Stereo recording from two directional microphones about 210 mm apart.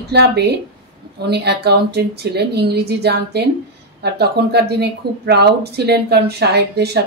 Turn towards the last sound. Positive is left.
turn(degrees=-50)  # may be behind; listen again after turning